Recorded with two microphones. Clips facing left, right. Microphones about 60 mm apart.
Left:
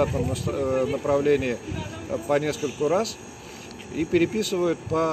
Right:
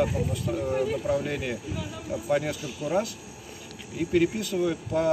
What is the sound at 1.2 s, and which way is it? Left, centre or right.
Speech, left.